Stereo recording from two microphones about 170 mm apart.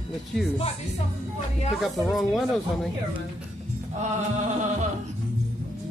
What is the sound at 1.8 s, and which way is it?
Speech, centre (ahead or behind).